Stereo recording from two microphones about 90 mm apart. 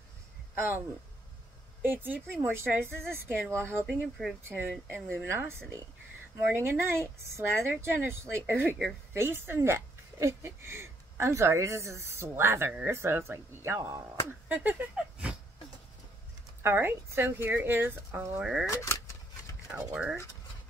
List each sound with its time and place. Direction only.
0.6 s speech: 25° right (ahead or behind)
3.8 s speech: centre (ahead or behind)
4.4 s speech: 25° right (ahead or behind)
14.5 s speech: 15° right (ahead or behind)
16.6 s speech: 25° right (ahead or behind)
18.4 s speech: 5° right (ahead or behind)
18.7 s speech: 30° left (ahead or behind)
19.7 s speech: 15° right (ahead or behind)